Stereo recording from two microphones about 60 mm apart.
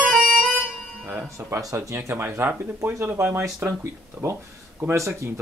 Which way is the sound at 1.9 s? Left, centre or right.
Right.